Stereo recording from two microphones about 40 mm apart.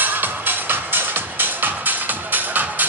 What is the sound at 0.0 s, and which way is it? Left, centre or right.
Music, right.